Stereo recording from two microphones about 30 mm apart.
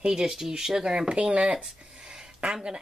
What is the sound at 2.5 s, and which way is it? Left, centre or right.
Speech, right.